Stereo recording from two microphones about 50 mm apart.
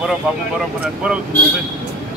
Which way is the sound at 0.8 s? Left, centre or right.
Centre.